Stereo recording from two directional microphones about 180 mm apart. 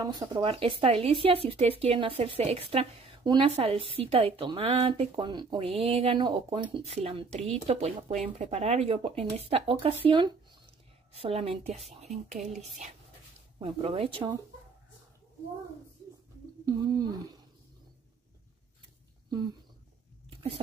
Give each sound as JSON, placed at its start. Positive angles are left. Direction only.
{"t": 0.0, "sound": "speech", "side_deg": -20}
{"t": 13.6, "sound": "speech", "side_deg": -30}
{"t": 16.6, "sound": "speech", "side_deg": -20}
{"t": 20.2, "sound": "a sound", "side_deg": -30}